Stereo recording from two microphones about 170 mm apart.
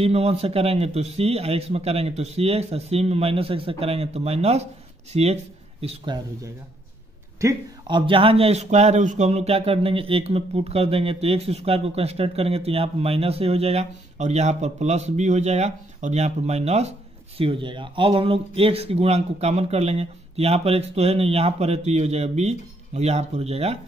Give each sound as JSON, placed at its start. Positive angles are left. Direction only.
{"t": 0.0, "sound": "a man's voice", "side_deg": -35}
{"t": 7.3, "sound": "a man's voice", "side_deg": -25}